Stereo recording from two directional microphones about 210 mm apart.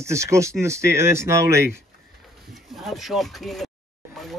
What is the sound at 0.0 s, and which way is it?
Speech, 15° right (ahead or behind).